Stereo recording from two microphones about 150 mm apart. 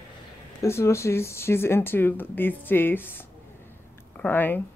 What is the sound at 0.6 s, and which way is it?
Speech, 15° left (ahead or behind).